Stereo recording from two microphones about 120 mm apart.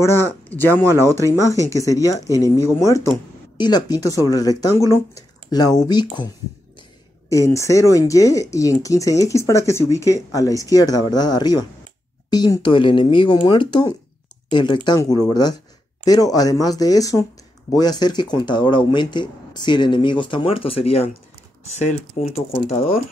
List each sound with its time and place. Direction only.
0.0 s speech: 20° left (ahead or behind)
3.5 s speech: 35° left (ahead or behind)
7.2 s speech: 25° left (ahead or behind); by 22.8 s 60° left (ahead or behind)